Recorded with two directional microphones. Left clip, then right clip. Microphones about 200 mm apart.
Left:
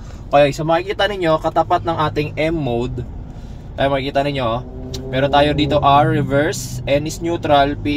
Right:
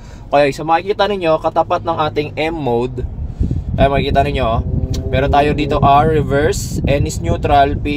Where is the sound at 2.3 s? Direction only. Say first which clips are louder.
Right 2 dB; 50° right (ahead or behind).